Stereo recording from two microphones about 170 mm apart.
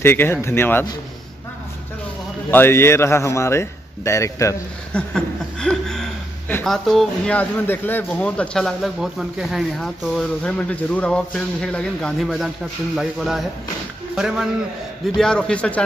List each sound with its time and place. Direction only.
0.0 s a man's voice: 15° left (ahead or behind)
2.5 s a man's voice: 15° left (ahead or behind)
4.9 s speech: 5° left (ahead or behind)